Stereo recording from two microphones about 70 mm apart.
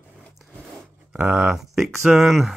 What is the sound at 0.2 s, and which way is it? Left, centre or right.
Filing, centre.